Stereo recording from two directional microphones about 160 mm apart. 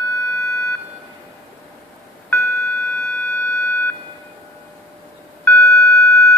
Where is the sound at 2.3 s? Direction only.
15° left (ahead or behind).